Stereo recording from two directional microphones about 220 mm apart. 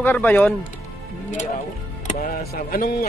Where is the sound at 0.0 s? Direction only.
10° left (ahead or behind).